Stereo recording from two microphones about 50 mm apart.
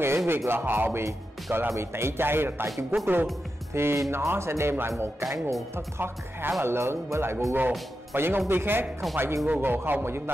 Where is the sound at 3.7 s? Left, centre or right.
Right.